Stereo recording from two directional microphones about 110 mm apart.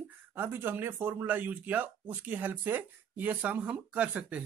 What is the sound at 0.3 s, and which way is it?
Speech, 20° right (ahead or behind).